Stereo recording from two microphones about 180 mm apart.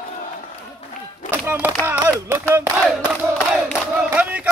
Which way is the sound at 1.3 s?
10° right (ahead or behind).